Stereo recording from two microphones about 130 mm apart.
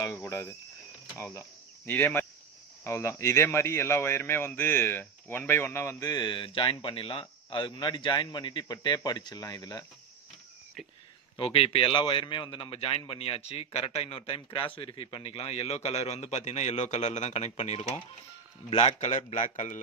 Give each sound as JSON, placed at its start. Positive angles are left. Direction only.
{"t": 0.2, "sound": "a man's voice", "side_deg": 20}
{"t": 11.3, "sound": "a man's voice", "side_deg": 45}